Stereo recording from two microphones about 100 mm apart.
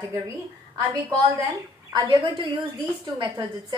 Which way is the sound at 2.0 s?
55° right (ahead or behind).